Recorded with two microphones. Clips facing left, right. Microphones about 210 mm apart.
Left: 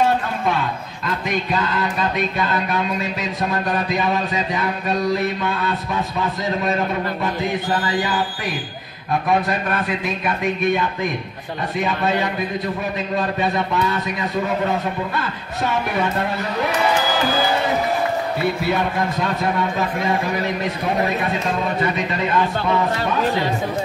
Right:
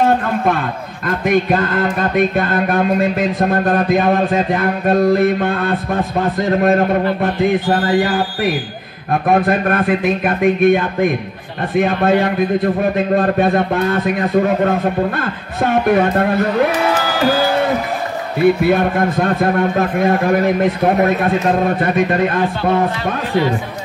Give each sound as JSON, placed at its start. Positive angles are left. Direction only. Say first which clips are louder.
{"t": 0.0, "sound": "a man's voice", "louder": "right 5 dB", "side_deg": -55}
{"t": 18.6, "sound": "a man's voice", "louder": "right 7 dB", "side_deg": -55}